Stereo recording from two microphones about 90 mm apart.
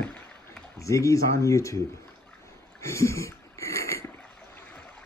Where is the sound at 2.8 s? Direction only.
35° left (ahead or behind).